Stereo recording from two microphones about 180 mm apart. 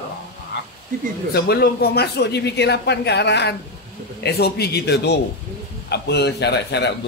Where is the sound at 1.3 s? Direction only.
60° left (ahead or behind).